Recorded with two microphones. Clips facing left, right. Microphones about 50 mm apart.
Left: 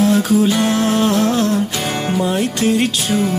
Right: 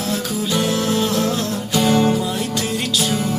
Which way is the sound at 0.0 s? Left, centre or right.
Left.